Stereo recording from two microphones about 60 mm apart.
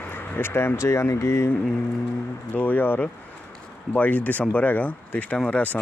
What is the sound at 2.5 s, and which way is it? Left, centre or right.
Speech, left.